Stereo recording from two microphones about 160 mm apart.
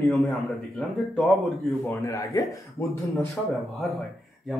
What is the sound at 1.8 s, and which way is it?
Speech, 15° left (ahead or behind).